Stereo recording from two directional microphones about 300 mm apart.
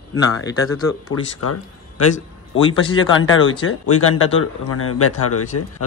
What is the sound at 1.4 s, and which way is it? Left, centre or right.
A man's voice, left.